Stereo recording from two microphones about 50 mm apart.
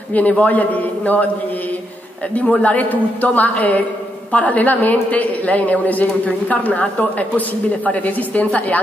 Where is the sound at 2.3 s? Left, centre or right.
Left.